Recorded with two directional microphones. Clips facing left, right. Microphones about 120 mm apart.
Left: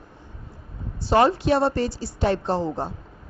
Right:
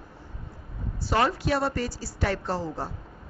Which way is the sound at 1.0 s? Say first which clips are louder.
Left 6 dB; 25° left (ahead or behind).